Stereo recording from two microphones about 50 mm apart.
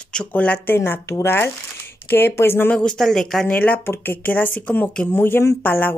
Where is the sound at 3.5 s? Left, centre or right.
Left.